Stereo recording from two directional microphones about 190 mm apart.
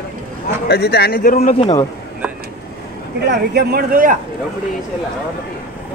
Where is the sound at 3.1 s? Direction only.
60° right (ahead or behind).